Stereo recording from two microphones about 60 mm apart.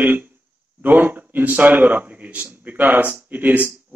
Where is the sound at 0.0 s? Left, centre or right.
Right.